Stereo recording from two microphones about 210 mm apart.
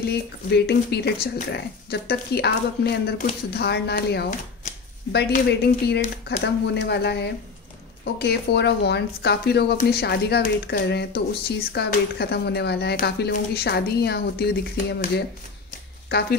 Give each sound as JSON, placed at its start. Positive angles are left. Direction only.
{"t": 0.0, "sound": "speech", "side_deg": 50}
{"t": 5.5, "sound": "speech", "side_deg": 50}